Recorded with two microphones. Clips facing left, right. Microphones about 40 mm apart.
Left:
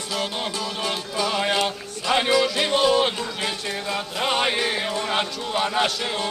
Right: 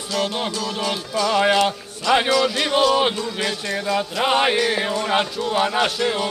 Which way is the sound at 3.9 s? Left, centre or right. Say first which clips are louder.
Right 5 dB; centre.